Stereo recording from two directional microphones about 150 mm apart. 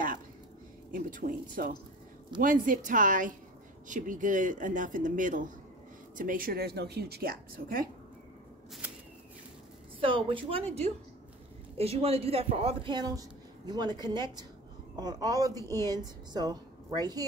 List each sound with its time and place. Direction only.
0.9 s speech: 65° right (ahead or behind)
9.9 s speech: 35° right (ahead or behind)
11.7 s a woman's voice: 40° right (ahead or behind)